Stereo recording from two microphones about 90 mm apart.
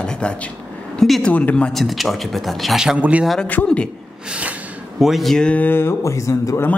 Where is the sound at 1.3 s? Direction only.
15° left (ahead or behind).